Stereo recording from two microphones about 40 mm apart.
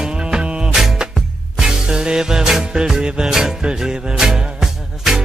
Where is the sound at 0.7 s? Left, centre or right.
Centre.